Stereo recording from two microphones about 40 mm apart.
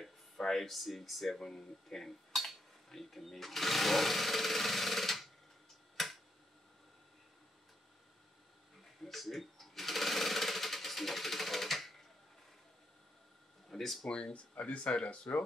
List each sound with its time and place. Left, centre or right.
0.0 s speech: centre
2.3 s a sound: centre
2.9 s speech: centre
6.0 s tick-tock: centre
9.0 s sewing machine: centre
13.7 s a sound: centre
14.0 s speech: left
14.6 s speech: left